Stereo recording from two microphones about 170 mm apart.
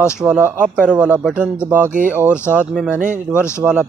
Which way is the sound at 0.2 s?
10° right (ahead or behind).